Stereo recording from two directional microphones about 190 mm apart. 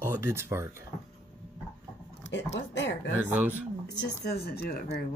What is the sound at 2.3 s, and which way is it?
Speech, 65° left (ahead or behind).